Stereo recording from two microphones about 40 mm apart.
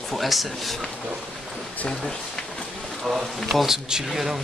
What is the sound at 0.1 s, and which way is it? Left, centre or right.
Speech, centre.